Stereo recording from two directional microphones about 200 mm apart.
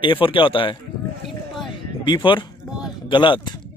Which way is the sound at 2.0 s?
25° left (ahead or behind).